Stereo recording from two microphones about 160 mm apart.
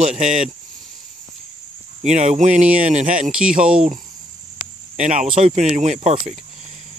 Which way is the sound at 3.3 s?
5° right (ahead or behind).